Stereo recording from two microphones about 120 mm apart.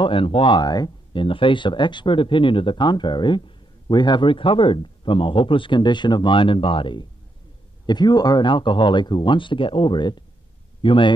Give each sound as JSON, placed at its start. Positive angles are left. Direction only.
{"t": 0.0, "sound": "speech", "side_deg": 50}